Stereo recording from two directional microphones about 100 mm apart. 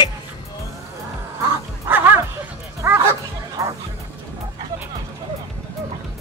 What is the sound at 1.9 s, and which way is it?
Bow-wow, 20° right (ahead or behind).